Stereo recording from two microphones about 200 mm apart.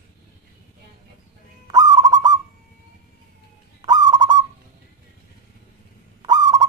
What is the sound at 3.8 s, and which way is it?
Owl, 20° right (ahead or behind).